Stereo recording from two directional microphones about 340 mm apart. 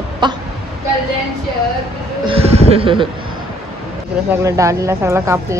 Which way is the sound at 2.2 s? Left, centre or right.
Centre.